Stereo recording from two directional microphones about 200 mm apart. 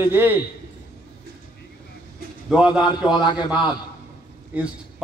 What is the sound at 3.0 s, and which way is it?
Speech, 20° left (ahead or behind).